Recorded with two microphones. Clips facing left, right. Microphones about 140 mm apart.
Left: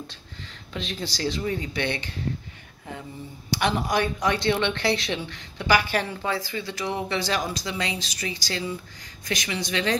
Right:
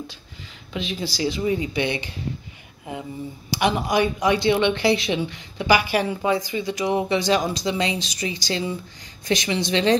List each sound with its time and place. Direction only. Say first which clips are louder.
0.7 s a woman's voice: right 4 dB; 5° right (ahead or behind); by 9.9 s 25° right (ahead or behind)